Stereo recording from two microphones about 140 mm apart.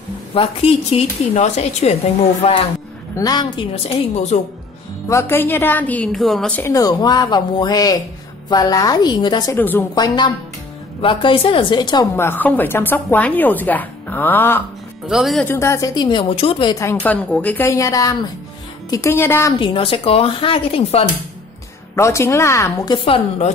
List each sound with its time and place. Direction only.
0.3 s a woman's voice: 40° left (ahead or behind)
3.2 s speech: 30° left (ahead or behind)
3.7 s a woman's voice: 50° left (ahead or behind)
5.0 s speech: 20° left (ahead or behind); by 6.5 s centre (ahead or behind)
6.7 s speech: 25° left (ahead or behind)
9.6 s speech: 15° left (ahead or behind)
9.9 s speech: 30° left (ahead or behind)
12.2 s speech: 15° left (ahead or behind)
15.0 s speech: centre (ahead or behind)
15.4 s speech: 20° left (ahead or behind); by 16.7 s 40° left (ahead or behind)
17.0 s speech: 10° left (ahead or behind)
19.6 s speech: 40° left (ahead or behind)
21.9 s speech: 20° left (ahead or behind)
22.8 s speech: 40° left (ahead or behind)